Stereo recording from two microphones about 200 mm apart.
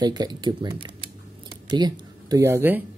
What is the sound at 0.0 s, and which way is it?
Speech, 20° right (ahead or behind).